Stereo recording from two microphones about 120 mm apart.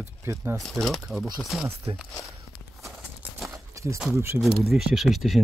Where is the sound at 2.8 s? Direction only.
Centre (ahead or behind).